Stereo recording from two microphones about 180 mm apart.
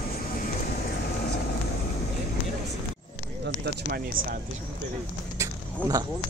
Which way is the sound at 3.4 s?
65° right (ahead or behind).